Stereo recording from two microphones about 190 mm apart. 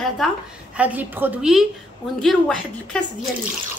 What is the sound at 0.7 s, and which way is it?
A woman's voice, 10° right (ahead or behind).